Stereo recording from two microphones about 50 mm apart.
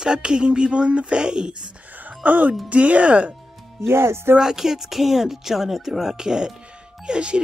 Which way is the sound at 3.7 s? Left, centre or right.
Right.